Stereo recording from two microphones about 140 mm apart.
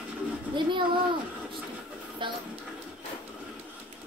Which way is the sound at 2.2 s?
35° right (ahead or behind).